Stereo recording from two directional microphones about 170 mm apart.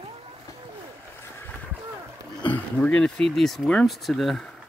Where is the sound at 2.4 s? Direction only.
10° left (ahead or behind).